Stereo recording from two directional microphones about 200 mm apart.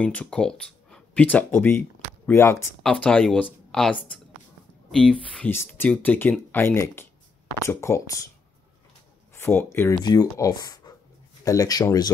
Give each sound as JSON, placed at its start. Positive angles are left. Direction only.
{"t": 0.0, "sound": "speech", "side_deg": 5}
{"t": 9.3, "sound": "speech", "side_deg": 10}